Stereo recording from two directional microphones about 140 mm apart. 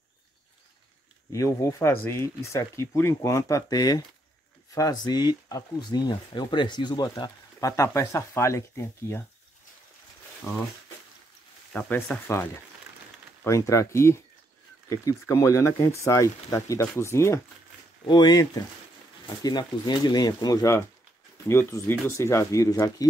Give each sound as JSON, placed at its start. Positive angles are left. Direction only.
{"t": 1.3, "sound": "speech", "side_deg": 25}
{"t": 11.7, "sound": "speech", "side_deg": 10}
{"t": 18.0, "sound": "speech", "side_deg": 30}